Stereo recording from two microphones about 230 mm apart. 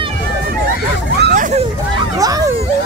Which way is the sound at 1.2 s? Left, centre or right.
Right.